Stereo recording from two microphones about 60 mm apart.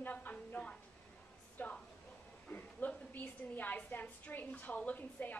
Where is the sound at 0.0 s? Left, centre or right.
Left.